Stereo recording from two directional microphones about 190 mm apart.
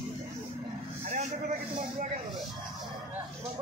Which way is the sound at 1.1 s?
40° right (ahead or behind).